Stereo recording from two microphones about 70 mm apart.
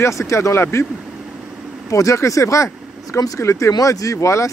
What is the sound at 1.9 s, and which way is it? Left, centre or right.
Speech, left.